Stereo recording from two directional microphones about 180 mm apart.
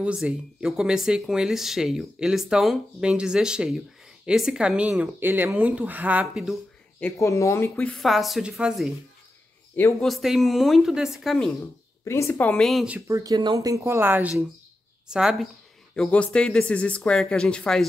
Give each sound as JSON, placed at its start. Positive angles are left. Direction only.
{"t": 0.0, "sound": "speech", "side_deg": -5}
{"t": 7.0, "sound": "speech", "side_deg": 15}
{"t": 7.7, "sound": "speech", "side_deg": 5}
{"t": 9.9, "sound": "speech", "side_deg": 0}
{"t": 12.0, "sound": "speech", "side_deg": 15}